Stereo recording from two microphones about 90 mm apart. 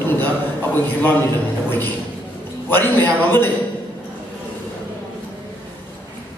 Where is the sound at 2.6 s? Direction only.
20° left (ahead or behind).